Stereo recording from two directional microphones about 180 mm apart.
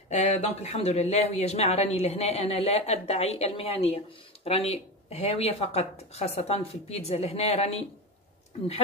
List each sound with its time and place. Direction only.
0.1 s speech: 40° left (ahead or behind)